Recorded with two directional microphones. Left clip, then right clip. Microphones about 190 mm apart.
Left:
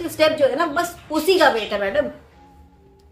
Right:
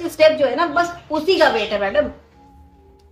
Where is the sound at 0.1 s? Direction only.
10° left (ahead or behind).